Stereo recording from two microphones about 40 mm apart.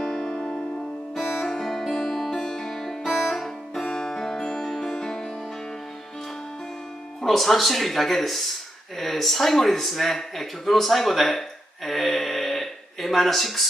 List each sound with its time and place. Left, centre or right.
0.0 s music: centre
1.1 s music: centre
1.4 s music: centre
3.8 s music: centre
7.2 s speech: centre